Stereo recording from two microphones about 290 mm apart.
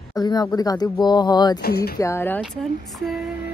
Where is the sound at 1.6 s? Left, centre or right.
Left.